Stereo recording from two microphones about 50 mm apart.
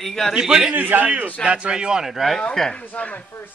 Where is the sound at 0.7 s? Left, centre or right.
Right.